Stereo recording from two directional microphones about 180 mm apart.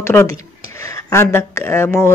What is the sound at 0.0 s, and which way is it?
Speech, 15° left (ahead or behind).